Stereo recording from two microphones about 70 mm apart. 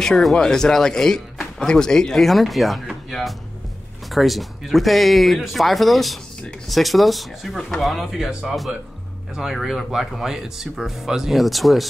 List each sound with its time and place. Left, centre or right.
0.0 s a man's voice: centre